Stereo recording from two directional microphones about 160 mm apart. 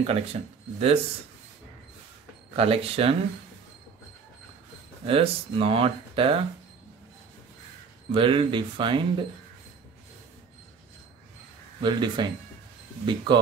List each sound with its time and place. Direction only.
0.0 s speech: 40° right (ahead or behind)
2.5 s speech: 35° right (ahead or behind)
5.0 s speech: 35° right (ahead or behind)
8.1 s speech: 30° right (ahead or behind)
11.8 s speech: 30° right (ahead or behind)